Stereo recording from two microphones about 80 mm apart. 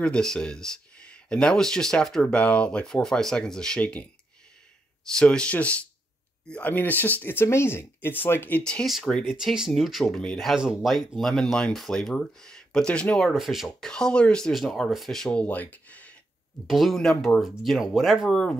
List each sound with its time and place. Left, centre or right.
0.0 s speech: centre
5.1 s speech: centre
8.8 s speech: centre
13.2 s speech: centre
13.8 s speech: centre
14.5 s speech: centre
15.4 s speech: centre
16.6 s speech: centre
18.3 s speech: centre